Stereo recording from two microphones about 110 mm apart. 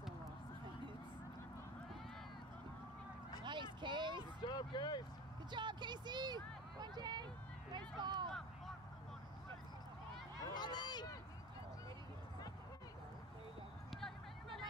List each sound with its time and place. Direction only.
3.4 s a sound: 45° right (ahead or behind)
4.4 s speech: 40° left (ahead or behind)
5.5 s speech: 45° right (ahead or behind)
8.3 s a sound: 5° left (ahead or behind)
10.4 s speech: 40° left (ahead or behind)
13.8 s vehicle: centre (ahead or behind)